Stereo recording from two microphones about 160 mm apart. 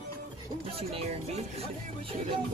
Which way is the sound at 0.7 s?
40° right (ahead or behind).